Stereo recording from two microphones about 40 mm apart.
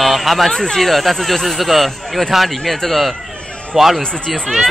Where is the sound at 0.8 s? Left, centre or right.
Centre.